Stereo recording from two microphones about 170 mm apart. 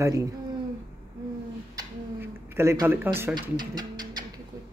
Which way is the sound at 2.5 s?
15° right (ahead or behind).